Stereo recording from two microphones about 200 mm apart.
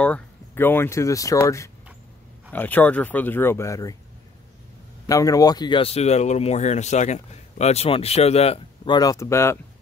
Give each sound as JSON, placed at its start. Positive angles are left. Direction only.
{"t": 0.0, "sound": "speech", "side_deg": 10}
{"t": 5.0, "sound": "speech", "side_deg": 15}